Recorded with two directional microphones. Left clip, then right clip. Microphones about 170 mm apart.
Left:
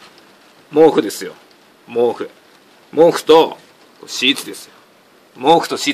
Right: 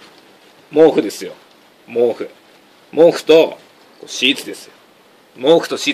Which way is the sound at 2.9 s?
35° left (ahead or behind).